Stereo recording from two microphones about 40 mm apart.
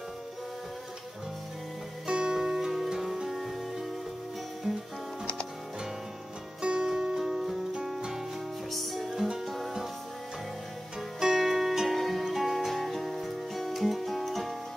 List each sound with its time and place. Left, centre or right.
2.0 s music: centre
4.7 s music: right
6.6 s music: centre
8.6 s music: centre
9.1 s music: centre
11.1 s music: centre